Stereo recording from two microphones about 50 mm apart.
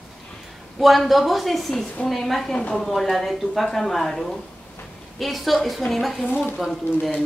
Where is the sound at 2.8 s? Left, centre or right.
Centre.